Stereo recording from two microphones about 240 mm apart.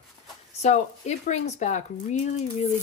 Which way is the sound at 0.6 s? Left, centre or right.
Left.